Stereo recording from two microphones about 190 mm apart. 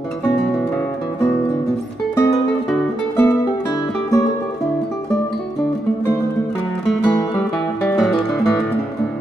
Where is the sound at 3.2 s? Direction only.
15° left (ahead or behind).